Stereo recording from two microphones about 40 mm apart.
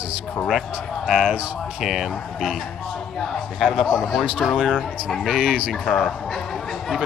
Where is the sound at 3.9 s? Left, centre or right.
Centre.